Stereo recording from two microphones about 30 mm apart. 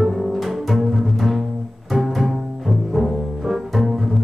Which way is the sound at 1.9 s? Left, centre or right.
Centre.